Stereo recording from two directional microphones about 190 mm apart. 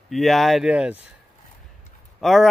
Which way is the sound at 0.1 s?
Centre (ahead or behind).